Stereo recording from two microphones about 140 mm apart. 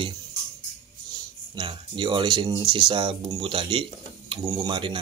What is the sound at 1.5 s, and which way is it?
Speech, 35° right (ahead or behind).